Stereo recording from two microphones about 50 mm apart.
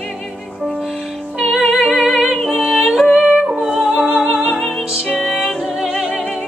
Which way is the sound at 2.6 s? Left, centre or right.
Centre.